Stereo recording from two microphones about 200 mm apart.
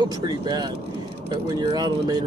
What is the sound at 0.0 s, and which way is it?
Speech, 20° right (ahead or behind).